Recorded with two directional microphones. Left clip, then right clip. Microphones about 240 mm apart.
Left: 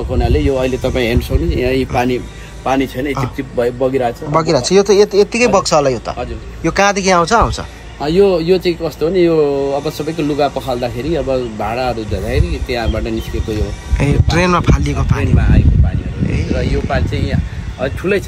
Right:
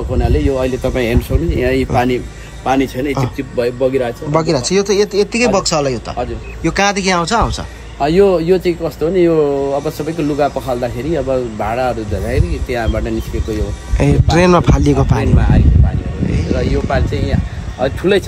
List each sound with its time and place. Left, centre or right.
0.1 s speech: centre
4.3 s speech: centre
15.3 s speech: right